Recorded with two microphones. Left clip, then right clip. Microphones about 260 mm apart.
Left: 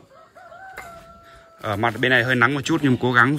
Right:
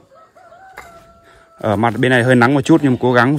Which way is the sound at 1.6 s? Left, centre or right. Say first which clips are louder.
Right 6 dB; right.